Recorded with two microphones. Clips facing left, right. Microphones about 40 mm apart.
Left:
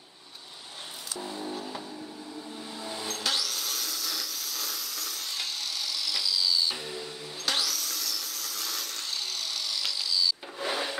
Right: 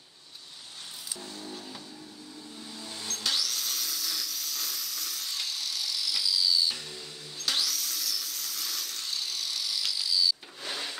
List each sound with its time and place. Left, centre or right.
1.2 s a sound: left
1.5 s vehicle: centre
2.8 s vehicle: centre
3.3 s dental drill: centre
6.9 s music: centre
7.4 s tools: centre
10.6 s wood: centre